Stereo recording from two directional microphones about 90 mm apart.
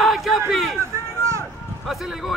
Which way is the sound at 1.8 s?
Centre (ahead or behind).